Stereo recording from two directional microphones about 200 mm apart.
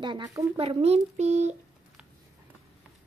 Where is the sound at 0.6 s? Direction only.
30° right (ahead or behind).